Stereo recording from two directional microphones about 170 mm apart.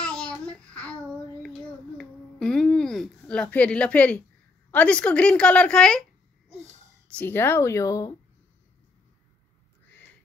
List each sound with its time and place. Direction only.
0.0 s child singing: 5° left (ahead or behind)
2.0 s a sound: 5° left (ahead or behind)
4.6 s a woman's voice: 10° left (ahead or behind)
7.1 s speech: 10° left (ahead or behind)